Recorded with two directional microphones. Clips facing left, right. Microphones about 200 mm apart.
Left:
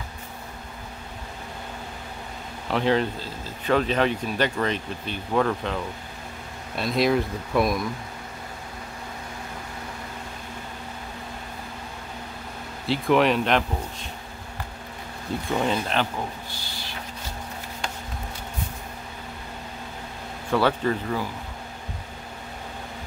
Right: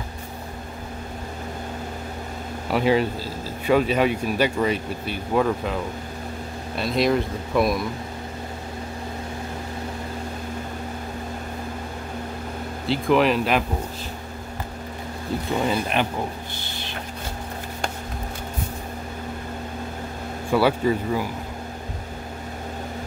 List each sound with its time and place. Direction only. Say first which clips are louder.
2.7 s speech: right 2 dB; 10° right (ahead or behind)
12.8 s speech: right 1 dB; centre (ahead or behind)
15.6 s speech: right 2 dB; 10° right (ahead or behind)
16.5 s a sound: right 3 dB; 20° right (ahead or behind)
20.4 s speech: right 3 dB; 10° right (ahead or behind)